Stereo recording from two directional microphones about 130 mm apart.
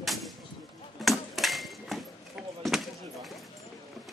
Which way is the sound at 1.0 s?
Centre (ahead or behind).